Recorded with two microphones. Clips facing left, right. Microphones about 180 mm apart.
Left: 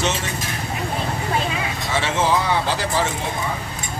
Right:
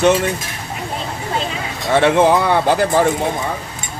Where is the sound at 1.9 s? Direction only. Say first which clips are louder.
Right 8 dB; 60° right (ahead or behind).